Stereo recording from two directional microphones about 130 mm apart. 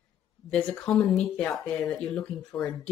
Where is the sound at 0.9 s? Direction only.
Centre (ahead or behind).